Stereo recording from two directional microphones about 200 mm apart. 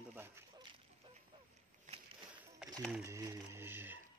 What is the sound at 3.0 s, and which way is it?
Speech, 15° right (ahead or behind).